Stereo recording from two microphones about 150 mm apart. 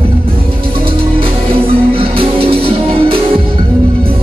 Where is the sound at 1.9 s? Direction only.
40° right (ahead or behind).